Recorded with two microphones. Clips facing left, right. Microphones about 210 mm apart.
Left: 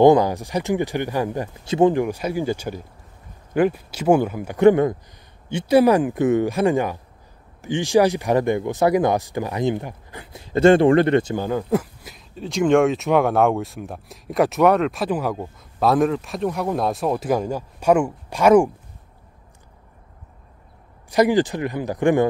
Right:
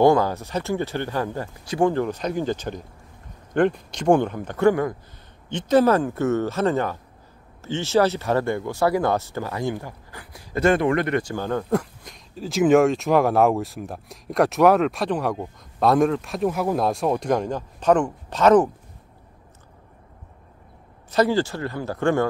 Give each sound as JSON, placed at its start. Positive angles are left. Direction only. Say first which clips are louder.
{"t": 0.0, "sound": "speech", "louder": "left 3 dB", "side_deg": 15}
{"t": 4.6, "sound": "speech", "louder": "left 5 dB", "side_deg": 20}
{"t": 5.5, "sound": "speech", "louder": "left 2 dB", "side_deg": 10}
{"t": 11.4, "sound": "speech", "louder": "left 2 dB", "side_deg": 5}
{"t": 21.1, "sound": "speech", "louder": "left 3 dB", "side_deg": 15}